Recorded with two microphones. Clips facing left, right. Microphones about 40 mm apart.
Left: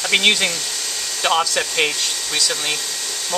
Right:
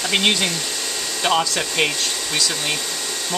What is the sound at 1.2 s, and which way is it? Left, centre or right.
Speech, centre.